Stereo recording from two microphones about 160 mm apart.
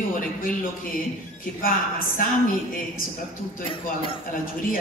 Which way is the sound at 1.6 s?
60° left (ahead or behind).